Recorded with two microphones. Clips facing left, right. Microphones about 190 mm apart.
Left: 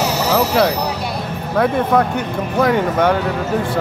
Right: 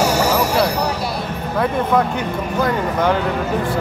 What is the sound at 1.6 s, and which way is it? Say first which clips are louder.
Speech: left 2 dB; 70° left (ahead or behind).